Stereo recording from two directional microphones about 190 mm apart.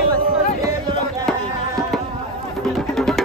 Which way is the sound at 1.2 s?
Centre (ahead or behind).